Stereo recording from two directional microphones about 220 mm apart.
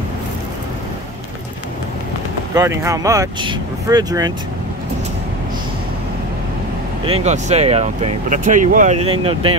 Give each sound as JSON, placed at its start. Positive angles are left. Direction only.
{"t": 2.5, "sound": "speech", "side_deg": -15}
{"t": 7.1, "sound": "speech", "side_deg": -30}